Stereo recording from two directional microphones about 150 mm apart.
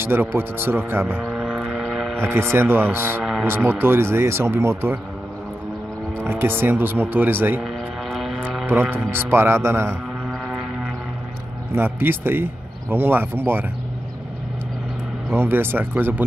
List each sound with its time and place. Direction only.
0.0 s speech: 15° right (ahead or behind)
1.3 s vehicle: 5° right (ahead or behind)
2.3 s speech: 15° right (ahead or behind)
3.2 s music: centre (ahead or behind)
3.4 s speech: 15° right (ahead or behind)
6.2 s speech: 15° right (ahead or behind)
7.6 s vehicle: centre (ahead or behind)
9.1 s speech: 15° right (ahead or behind)
11.7 s speech: 15° right (ahead or behind)
15.3 s speech: 15° right (ahead or behind)